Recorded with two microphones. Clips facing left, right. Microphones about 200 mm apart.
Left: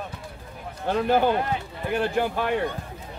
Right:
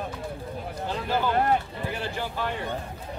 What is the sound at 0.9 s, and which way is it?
Speech, 55° left (ahead or behind).